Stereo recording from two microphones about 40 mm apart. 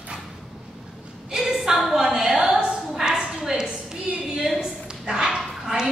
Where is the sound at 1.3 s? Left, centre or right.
Centre.